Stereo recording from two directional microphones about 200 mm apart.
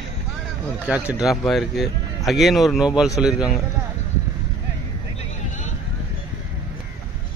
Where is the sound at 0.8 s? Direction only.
5° right (ahead or behind).